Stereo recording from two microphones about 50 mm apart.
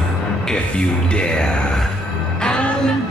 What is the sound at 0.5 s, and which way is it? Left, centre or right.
Music, centre.